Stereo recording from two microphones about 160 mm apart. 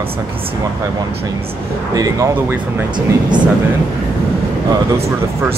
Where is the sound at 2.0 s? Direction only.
20° right (ahead or behind).